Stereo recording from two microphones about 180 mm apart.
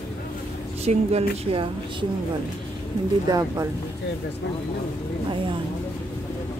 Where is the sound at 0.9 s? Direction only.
35° right (ahead or behind).